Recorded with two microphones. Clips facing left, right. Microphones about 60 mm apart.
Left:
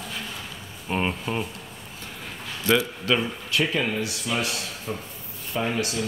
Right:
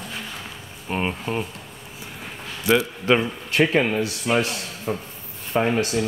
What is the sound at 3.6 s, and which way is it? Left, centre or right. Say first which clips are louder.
A man's voice: right 6 dB; right.